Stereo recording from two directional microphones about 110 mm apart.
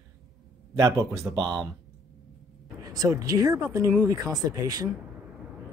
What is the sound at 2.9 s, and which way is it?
Speech, 35° right (ahead or behind).